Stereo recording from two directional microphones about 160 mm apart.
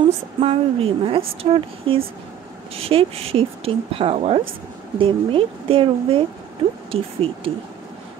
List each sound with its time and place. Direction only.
0.4 s a woman's voice: 35° right (ahead or behind)